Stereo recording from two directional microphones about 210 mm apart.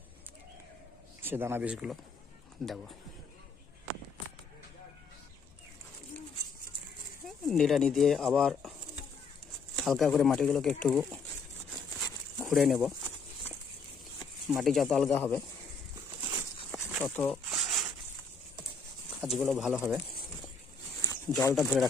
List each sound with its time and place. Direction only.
1.2 s speech: 10° right (ahead or behind)
7.2 s speech: centre (ahead or behind)
9.8 s speech: centre (ahead or behind)
12.4 s speech: centre (ahead or behind)
14.5 s speech: centre (ahead or behind)
16.7 s a sound: 5° left (ahead or behind)
19.2 s speech: centre (ahead or behind)
21.0 s a sound: 15° left (ahead or behind)
21.5 s speech: centre (ahead or behind)